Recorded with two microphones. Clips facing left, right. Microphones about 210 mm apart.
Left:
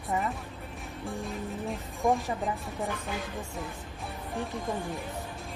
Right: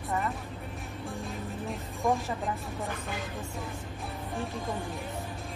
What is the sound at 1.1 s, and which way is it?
Speech, centre (ahead or behind).